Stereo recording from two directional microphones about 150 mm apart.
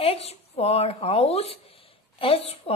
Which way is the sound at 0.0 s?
40° left (ahead or behind).